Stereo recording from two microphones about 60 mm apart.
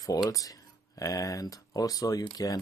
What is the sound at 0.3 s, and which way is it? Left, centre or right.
Speech, left.